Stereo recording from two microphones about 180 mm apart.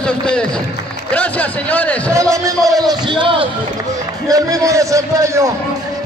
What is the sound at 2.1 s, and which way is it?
A man's voice, 15° right (ahead or behind).